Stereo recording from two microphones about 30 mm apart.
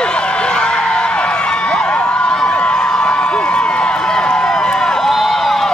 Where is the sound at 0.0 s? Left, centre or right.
Left.